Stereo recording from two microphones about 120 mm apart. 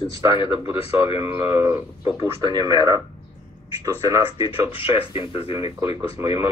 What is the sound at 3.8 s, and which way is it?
Speech, 30° right (ahead or behind).